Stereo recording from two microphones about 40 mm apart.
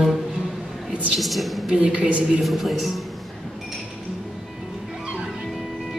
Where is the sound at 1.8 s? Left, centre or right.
Right.